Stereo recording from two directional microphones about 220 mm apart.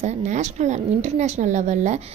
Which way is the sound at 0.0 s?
30° right (ahead or behind).